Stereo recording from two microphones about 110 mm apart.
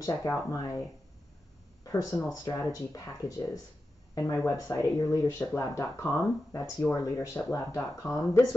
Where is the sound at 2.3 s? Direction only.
30° left (ahead or behind).